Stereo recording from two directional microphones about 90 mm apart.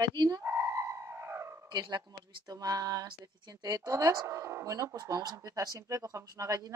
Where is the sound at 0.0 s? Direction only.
50° right (ahead or behind).